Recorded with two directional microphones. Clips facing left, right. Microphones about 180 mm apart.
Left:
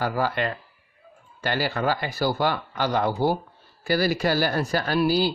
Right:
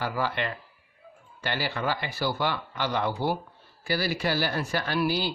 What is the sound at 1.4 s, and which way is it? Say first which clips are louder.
Speech: left 5 dB; 45° left (ahead or behind).